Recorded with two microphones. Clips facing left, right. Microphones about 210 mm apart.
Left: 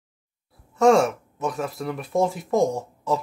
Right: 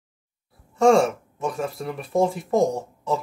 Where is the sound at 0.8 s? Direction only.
Centre (ahead or behind).